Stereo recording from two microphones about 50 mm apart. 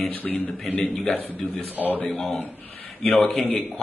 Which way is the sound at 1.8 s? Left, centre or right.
Left.